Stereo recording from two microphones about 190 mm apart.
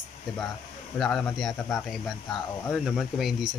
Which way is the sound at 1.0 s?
5° left (ahead or behind).